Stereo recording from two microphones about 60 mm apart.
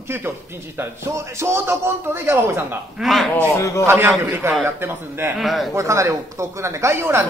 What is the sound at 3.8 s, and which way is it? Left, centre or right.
A man's voice, right.